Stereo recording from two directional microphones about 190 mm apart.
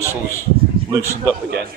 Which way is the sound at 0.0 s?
15° left (ahead or behind).